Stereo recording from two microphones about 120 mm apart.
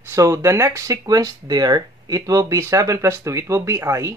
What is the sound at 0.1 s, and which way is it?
Speech, 25° right (ahead or behind).